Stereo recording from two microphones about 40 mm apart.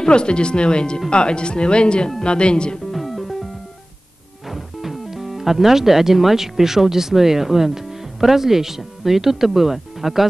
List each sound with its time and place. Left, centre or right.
0.0 s speech: left
2.9 s music: centre
4.5 s speech: centre